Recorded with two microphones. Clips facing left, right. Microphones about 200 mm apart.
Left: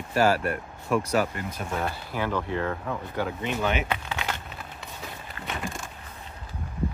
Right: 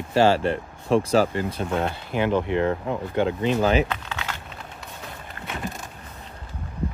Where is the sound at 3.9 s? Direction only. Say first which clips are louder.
Left 1 dB; 15° left (ahead or behind).